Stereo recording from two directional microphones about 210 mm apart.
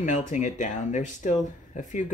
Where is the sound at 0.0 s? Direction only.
35° left (ahead or behind).